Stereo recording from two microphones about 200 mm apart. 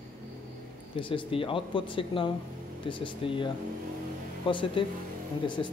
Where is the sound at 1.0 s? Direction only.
25° left (ahead or behind).